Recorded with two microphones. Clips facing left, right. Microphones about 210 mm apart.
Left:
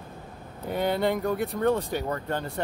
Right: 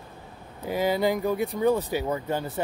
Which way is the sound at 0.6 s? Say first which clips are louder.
Right 1 dB; 5° right (ahead or behind).